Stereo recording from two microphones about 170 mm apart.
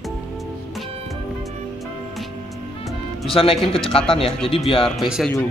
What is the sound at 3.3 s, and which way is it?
Speech, 35° left (ahead or behind).